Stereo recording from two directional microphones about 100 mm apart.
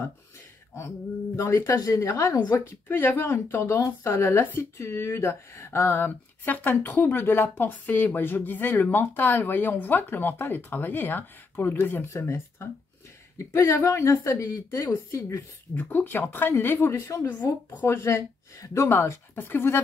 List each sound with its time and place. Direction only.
0.7 s speech: 25° left (ahead or behind)
2.5 s speech: 20° left (ahead or behind)
15.7 s speech: 20° left (ahead or behind)